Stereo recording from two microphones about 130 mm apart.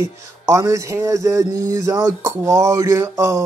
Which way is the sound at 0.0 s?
25° right (ahead or behind).